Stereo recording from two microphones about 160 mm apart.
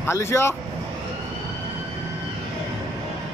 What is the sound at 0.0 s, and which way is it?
Speech, 15° left (ahead or behind).